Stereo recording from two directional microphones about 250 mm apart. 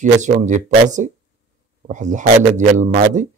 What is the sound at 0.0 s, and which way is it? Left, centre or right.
A man's voice, right.